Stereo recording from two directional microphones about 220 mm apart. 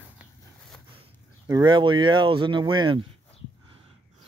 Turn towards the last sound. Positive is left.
turn(degrees=-25)  # may be behind; listen again after turning